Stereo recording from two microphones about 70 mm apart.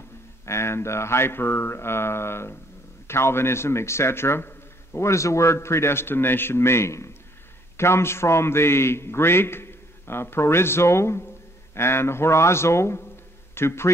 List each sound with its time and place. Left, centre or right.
0.5 s a man's voice: left